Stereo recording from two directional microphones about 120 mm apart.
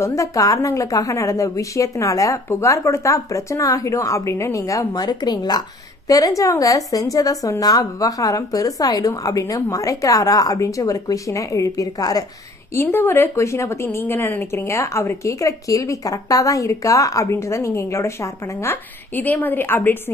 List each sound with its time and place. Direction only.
0.0 s a woman's voice: 25° left (ahead or behind)
12.7 s a woman's voice: 20° left (ahead or behind)